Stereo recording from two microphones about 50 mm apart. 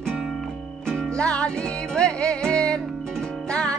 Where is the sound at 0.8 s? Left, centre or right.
Centre.